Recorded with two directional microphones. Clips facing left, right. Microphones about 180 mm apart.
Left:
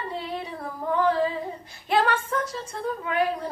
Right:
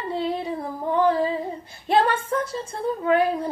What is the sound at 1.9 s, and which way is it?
Speech, 30° right (ahead or behind).